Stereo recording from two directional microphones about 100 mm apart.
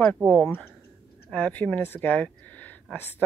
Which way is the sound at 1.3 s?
15° left (ahead or behind).